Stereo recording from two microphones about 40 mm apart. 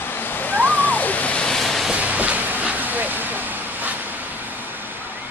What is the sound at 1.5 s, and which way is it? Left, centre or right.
Waves, centre.